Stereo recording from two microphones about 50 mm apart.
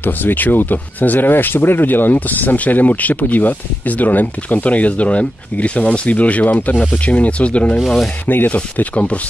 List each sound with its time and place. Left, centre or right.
0.0 s speech: left
8.3 s speech: left
8.7 s speech: left